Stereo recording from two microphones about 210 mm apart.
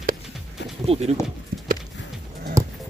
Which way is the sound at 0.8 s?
30° right (ahead or behind).